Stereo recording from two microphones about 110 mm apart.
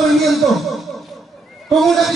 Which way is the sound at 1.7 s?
Centre (ahead or behind).